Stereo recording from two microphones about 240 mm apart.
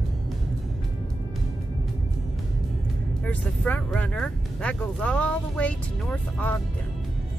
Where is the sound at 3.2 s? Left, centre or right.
Centre.